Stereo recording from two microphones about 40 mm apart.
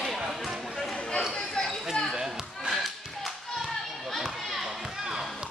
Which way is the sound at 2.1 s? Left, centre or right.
Centre.